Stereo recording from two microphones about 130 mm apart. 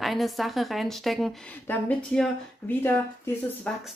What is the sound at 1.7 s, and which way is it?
Speech, 15° left (ahead or behind).